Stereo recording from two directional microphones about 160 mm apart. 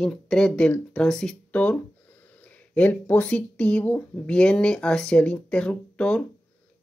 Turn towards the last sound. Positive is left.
turn(degrees=5)  # may be behind; listen again after turning